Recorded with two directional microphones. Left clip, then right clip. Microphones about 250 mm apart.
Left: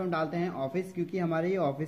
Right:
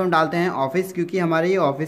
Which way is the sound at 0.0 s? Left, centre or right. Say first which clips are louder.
Right 12 dB; centre.